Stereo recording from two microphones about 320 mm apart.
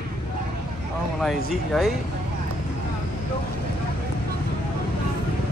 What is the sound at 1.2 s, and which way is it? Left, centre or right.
Speech, centre.